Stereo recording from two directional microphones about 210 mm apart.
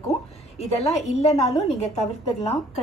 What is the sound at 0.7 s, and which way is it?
A woman's voice, 30° left (ahead or behind).